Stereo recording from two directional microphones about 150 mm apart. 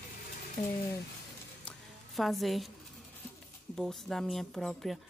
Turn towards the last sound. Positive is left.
turn(degrees=5)  # may be behind; listen again after turning